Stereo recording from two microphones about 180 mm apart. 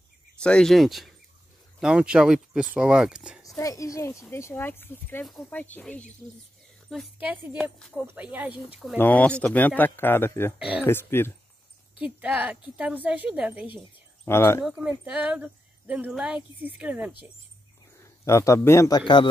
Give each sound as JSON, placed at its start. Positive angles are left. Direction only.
{"t": 0.4, "sound": "speech", "side_deg": 5}
{"t": 3.4, "sound": "speech", "side_deg": 20}
{"t": 6.9, "sound": "speech", "side_deg": -5}
{"t": 8.9, "sound": "speech", "side_deg": 10}
{"t": 10.6, "sound": "speech", "side_deg": -10}
{"t": 10.9, "sound": "speech", "side_deg": 15}
{"t": 12.0, "sound": "speech", "side_deg": -10}
{"t": 13.7, "sound": "speech", "side_deg": 15}
{"t": 14.6, "sound": "speech", "side_deg": -5}
{"t": 18.0, "sound": "a man's voice", "side_deg": 15}